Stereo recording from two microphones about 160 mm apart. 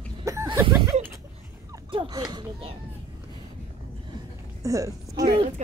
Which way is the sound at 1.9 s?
30° right (ahead or behind).